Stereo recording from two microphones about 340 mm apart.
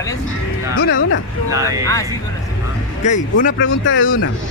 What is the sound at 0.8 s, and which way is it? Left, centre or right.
Speech, left.